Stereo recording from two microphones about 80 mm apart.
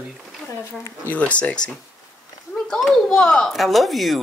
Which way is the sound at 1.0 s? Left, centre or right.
Centre.